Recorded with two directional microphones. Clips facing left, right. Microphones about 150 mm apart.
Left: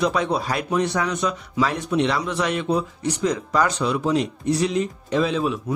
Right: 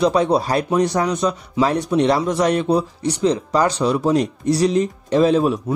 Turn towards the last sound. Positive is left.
turn(degrees=-40)  # may be behind; listen again after turning